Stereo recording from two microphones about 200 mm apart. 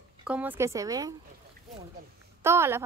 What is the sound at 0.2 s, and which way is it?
Speech, 5° right (ahead or behind).